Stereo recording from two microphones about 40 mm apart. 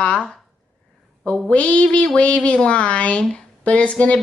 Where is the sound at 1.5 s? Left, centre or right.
Left.